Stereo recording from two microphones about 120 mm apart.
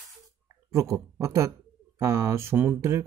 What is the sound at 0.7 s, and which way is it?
Speech, 25° right (ahead or behind).